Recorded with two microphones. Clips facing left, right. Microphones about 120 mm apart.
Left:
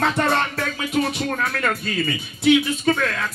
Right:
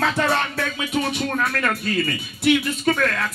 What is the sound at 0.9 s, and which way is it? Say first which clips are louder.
Speech: left 2 dB; centre (ahead or behind).